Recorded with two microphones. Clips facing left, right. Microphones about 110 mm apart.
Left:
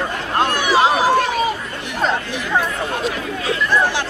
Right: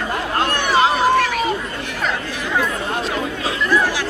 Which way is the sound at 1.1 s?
30° left (ahead or behind).